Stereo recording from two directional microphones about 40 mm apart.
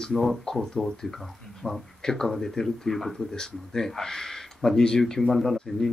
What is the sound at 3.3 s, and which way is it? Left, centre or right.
Speech, centre.